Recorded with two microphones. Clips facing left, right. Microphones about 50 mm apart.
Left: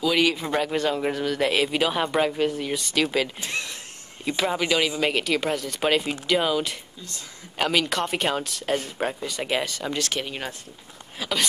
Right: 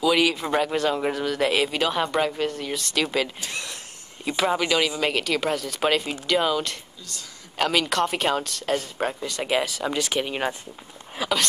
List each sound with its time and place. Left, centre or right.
0.0 s a man's voice: centre
3.3 s speech: left
4.2 s a man's voice: centre
11.1 s speech: centre